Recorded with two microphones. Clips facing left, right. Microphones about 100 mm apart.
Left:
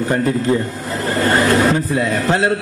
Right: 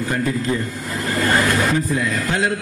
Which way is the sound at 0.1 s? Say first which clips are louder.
Left 5 dB; 35° left (ahead or behind).